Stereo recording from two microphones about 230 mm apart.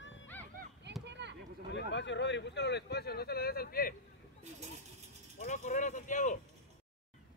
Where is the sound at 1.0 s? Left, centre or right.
Right.